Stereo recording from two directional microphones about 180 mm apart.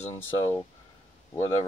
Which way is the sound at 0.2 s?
15° left (ahead or behind).